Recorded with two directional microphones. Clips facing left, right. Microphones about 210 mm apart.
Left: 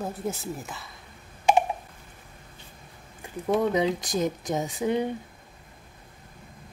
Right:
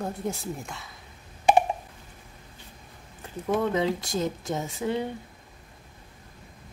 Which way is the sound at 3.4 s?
15° left (ahead or behind).